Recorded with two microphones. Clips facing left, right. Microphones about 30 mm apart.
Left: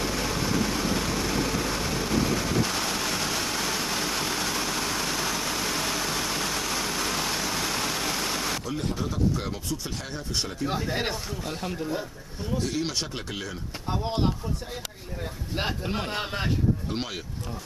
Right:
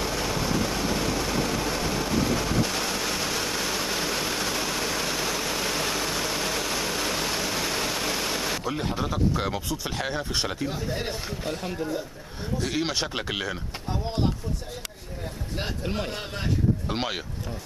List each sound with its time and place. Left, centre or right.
0.0 s vehicle: centre
8.6 s speech: right
9.8 s speech: right
10.7 s speech: left
11.5 s speech: centre
13.1 s speech: right
13.8 s speech: centre
15.8 s speech: centre
16.1 s speech: centre
16.9 s speech: right